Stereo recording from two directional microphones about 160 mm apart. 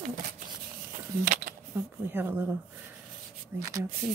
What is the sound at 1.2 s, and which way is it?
Speech, 65° right (ahead or behind).